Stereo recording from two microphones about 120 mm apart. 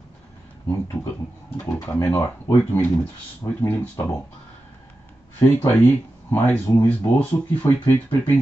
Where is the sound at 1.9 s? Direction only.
20° left (ahead or behind).